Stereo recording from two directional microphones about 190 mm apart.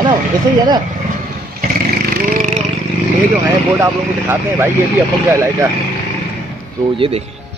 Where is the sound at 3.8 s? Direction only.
10° right (ahead or behind).